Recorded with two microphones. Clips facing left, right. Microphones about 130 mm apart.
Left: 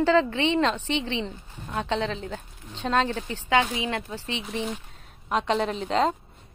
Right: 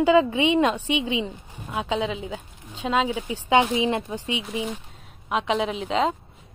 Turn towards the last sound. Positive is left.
turn(degrees=0)  # may be behind; listen again after turning